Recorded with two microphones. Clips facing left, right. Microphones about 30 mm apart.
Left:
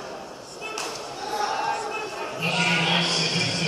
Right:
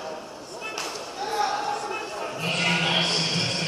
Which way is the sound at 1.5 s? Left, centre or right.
Centre.